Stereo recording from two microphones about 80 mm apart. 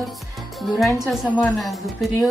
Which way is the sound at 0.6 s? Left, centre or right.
Centre.